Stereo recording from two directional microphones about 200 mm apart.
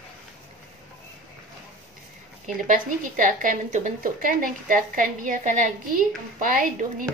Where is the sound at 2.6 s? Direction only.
40° right (ahead or behind).